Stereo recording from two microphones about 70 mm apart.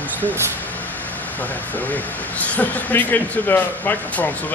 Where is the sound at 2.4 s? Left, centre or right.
Left.